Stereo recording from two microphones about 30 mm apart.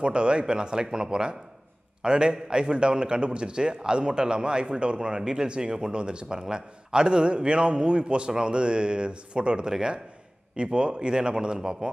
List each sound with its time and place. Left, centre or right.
0.0 s a man's voice: right